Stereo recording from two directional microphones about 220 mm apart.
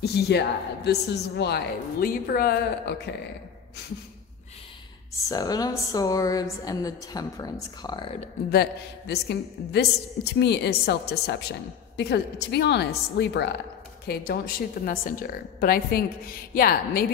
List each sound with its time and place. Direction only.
0.0 s a woman's voice: 50° left (ahead or behind)
5.3 s a woman's voice: 15° left (ahead or behind)
8.5 s a woman's voice: 45° left (ahead or behind)